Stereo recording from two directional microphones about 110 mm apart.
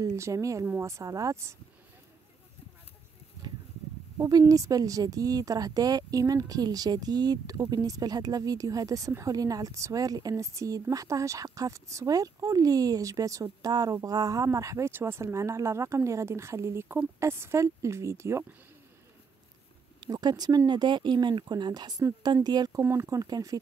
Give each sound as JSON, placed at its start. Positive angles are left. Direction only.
{"t": 0.0, "sound": "speech", "side_deg": -30}
{"t": 4.2, "sound": "speech", "side_deg": -35}
{"t": 20.0, "sound": "speech", "side_deg": -40}
{"t": 22.8, "sound": "speech", "side_deg": -25}